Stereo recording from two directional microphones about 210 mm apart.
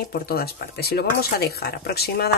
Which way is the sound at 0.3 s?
45° left (ahead or behind).